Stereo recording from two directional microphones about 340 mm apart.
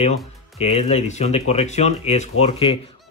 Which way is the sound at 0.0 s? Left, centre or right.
Centre.